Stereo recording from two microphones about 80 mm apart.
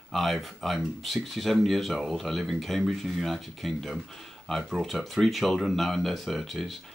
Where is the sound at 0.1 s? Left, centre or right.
Centre.